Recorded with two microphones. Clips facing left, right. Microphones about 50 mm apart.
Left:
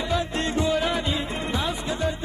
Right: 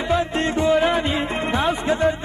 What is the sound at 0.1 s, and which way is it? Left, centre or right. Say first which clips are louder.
Music: right 6 dB; right.